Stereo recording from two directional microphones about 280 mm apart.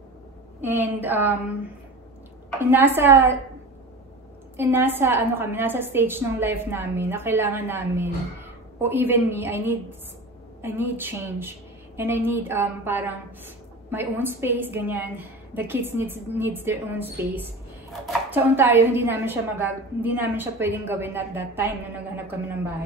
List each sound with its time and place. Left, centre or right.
0.6 s a woman's voice: centre
2.6 s a woman's voice: centre
4.6 s a woman's voice: centre